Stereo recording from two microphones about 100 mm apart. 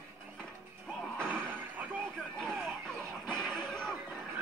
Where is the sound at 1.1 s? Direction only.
10° left (ahead or behind).